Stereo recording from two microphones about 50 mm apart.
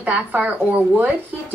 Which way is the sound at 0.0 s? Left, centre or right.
Right.